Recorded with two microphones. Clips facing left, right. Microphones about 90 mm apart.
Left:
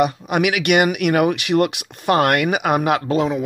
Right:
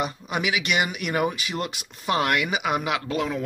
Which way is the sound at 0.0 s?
65° left (ahead or behind).